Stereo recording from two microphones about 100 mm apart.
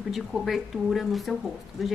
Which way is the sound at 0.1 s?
Centre (ahead or behind).